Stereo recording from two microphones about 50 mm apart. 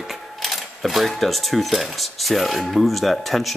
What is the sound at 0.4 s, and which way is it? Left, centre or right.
Speech, centre.